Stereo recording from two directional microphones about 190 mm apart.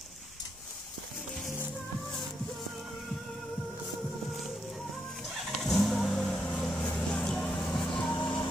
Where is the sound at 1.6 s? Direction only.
Centre (ahead or behind).